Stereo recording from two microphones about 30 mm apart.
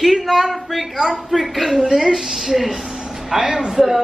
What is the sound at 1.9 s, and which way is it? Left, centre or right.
A child's voice, centre.